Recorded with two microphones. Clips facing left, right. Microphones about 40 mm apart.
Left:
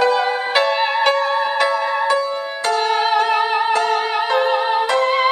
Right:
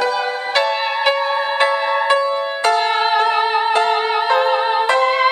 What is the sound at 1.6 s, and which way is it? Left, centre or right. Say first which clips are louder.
Music: right 1 dB; right.